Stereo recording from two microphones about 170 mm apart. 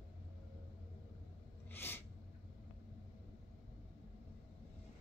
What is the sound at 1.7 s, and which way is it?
Sneeze, 10° left (ahead or behind).